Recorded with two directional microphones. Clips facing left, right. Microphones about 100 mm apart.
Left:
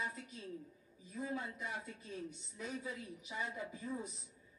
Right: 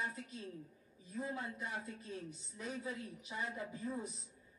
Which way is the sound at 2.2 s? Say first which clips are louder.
Even; centre (ahead or behind).